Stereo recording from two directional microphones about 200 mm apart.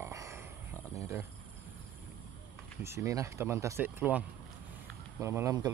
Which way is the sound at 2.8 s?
15° right (ahead or behind).